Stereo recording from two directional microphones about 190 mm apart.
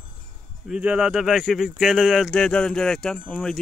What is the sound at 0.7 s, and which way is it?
Speech, 5° right (ahead or behind).